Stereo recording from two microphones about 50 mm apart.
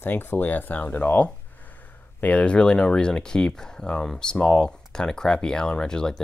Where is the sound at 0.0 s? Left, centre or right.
Left.